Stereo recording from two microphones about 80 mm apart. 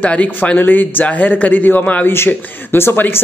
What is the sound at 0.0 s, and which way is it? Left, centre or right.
Speech, centre.